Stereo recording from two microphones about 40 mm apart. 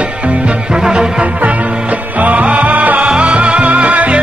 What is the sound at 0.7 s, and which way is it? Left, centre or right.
Music, centre.